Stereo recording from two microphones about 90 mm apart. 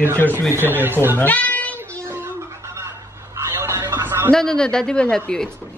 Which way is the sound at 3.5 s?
25° right (ahead or behind).